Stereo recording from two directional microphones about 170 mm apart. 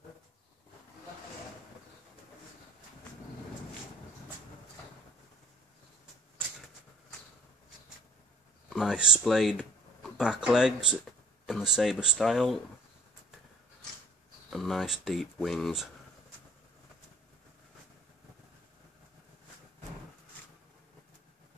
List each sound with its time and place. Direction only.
8.6 s speech: 5° right (ahead or behind)
14.5 s speech: centre (ahead or behind)